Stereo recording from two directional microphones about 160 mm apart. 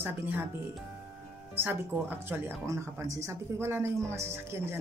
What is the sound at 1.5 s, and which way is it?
Speech, 15° right (ahead or behind).